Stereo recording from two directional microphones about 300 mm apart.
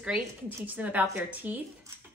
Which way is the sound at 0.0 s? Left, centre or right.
Centre.